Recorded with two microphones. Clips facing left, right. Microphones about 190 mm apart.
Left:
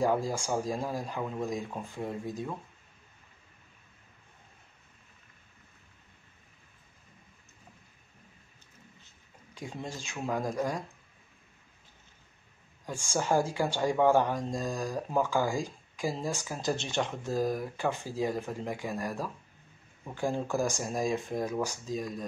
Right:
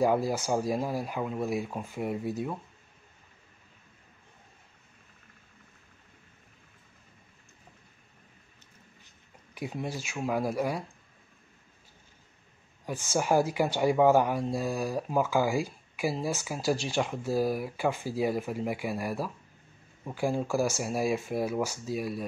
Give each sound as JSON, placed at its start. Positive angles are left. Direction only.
{"t": 0.0, "sound": "speech", "side_deg": -10}
{"t": 9.5, "sound": "speech", "side_deg": -10}
{"t": 12.9, "sound": "speech", "side_deg": 10}
{"t": 13.2, "sound": "speech", "side_deg": -10}
{"t": 20.4, "sound": "speech", "side_deg": 15}
{"t": 20.8, "sound": "speech", "side_deg": -10}